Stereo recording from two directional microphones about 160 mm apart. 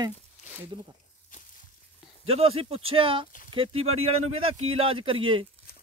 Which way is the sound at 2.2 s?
40° right (ahead or behind).